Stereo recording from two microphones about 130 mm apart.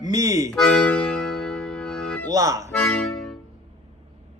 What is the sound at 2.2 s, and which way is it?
Speech, 25° right (ahead or behind).